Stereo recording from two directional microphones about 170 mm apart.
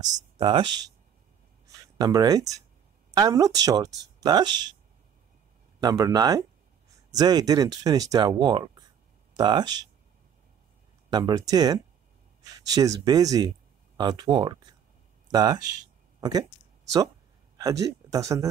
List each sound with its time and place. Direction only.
0.0 s speech: 30° right (ahead or behind)
2.0 s speech: 20° right (ahead or behind)
5.8 s speech: 20° right (ahead or behind)
11.1 s speech: 25° right (ahead or behind)
17.6 s speech: 20° right (ahead or behind)